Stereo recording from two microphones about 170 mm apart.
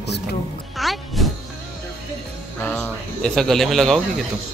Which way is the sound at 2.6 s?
15° left (ahead or behind).